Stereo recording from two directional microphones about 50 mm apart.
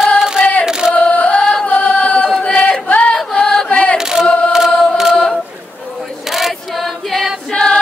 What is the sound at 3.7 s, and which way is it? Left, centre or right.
Chant, left.